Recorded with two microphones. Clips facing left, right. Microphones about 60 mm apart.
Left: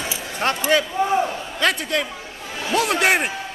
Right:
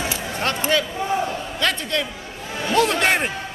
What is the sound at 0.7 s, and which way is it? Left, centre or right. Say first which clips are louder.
A man's voice: left 4 dB; centre.